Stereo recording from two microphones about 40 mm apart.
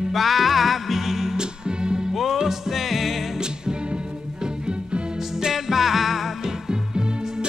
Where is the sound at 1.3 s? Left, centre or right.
Right.